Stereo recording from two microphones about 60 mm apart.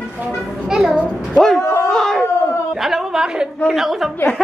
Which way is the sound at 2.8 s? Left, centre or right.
Centre.